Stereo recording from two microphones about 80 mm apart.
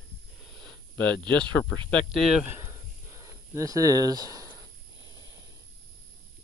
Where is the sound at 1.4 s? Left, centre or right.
Centre.